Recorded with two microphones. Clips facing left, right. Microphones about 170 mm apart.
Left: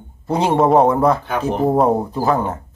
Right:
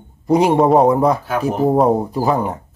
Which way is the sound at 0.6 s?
Centre (ahead or behind).